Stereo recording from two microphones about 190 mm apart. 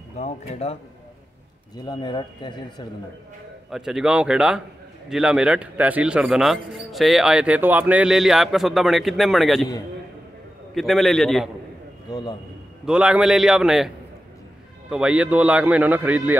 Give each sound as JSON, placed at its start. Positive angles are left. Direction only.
{"t": 0.2, "sound": "speech", "side_deg": 30}
{"t": 1.9, "sound": "speech", "side_deg": 25}
{"t": 3.7, "sound": "speech", "side_deg": -5}
{"t": 10.7, "sound": "speech", "side_deg": 0}
{"t": 12.1, "sound": "speech", "side_deg": 20}
{"t": 12.8, "sound": "a man's voice", "side_deg": -5}